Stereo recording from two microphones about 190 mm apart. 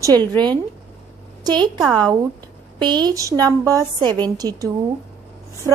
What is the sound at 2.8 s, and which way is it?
A woman's voice, 20° right (ahead or behind).